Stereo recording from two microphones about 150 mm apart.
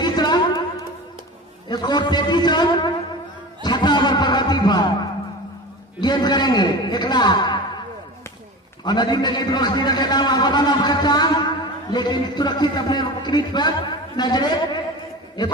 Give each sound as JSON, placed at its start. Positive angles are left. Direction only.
{"t": 0.0, "sound": "a sound", "side_deg": 30}
{"t": 5.9, "sound": "a man's voice", "side_deg": 30}
{"t": 8.8, "sound": "a man's voice", "side_deg": 30}